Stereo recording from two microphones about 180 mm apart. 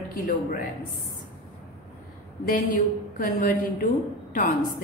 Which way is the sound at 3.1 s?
50° left (ahead or behind).